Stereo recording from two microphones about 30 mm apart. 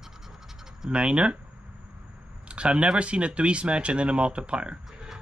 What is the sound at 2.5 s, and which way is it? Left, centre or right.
Speech, right.